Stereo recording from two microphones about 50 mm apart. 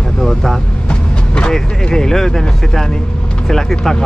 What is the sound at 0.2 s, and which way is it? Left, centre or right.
Speech, centre.